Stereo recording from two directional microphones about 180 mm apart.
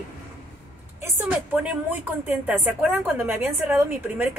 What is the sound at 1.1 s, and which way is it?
A woman's voice, 5° right (ahead or behind).